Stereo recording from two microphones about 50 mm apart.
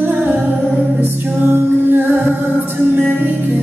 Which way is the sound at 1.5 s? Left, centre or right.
Right.